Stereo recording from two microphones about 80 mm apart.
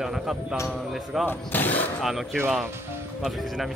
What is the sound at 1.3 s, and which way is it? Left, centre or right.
Speech, left.